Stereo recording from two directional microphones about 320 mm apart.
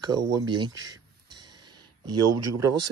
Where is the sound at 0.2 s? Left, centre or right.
Centre.